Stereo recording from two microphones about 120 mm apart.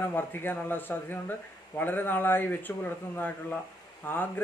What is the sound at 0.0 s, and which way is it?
Speech, 15° left (ahead or behind).